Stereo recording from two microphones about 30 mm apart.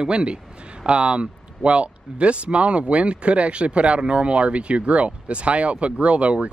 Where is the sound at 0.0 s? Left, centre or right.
Right.